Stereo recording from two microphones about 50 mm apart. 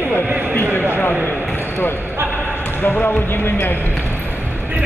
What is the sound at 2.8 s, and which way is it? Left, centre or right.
Speech, left.